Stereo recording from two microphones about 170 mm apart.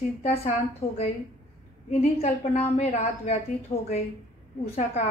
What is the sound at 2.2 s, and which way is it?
A woman's voice, 40° left (ahead or behind).